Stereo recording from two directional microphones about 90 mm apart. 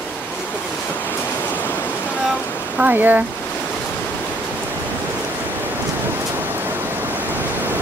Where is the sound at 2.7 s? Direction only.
20° right (ahead or behind).